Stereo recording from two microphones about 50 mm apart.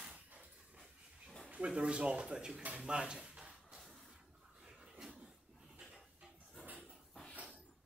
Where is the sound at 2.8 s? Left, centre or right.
Centre.